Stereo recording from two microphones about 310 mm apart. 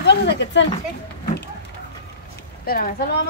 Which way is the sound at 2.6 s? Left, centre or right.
Left.